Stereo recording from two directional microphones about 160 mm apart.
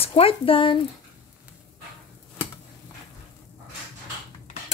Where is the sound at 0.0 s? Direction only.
35° left (ahead or behind).